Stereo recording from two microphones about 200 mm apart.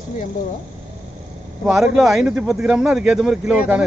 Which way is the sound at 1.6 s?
5° right (ahead or behind).